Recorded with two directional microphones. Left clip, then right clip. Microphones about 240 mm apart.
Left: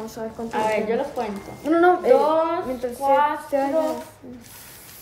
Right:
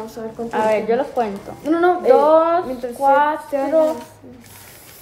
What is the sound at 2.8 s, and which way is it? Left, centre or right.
Speech, centre.